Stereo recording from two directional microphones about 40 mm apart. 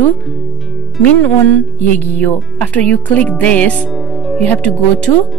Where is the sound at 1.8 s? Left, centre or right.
Left.